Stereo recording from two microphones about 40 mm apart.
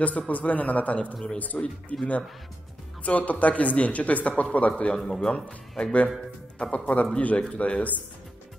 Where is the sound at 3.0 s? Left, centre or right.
Left.